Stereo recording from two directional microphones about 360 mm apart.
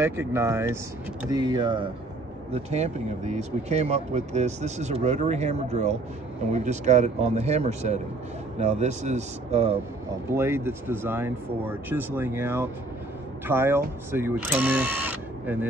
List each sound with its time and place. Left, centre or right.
0.0 s speech: centre